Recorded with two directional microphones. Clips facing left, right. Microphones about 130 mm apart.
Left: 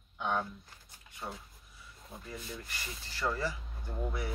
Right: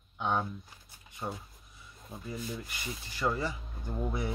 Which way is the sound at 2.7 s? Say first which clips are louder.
Right 4 dB; 15° right (ahead or behind).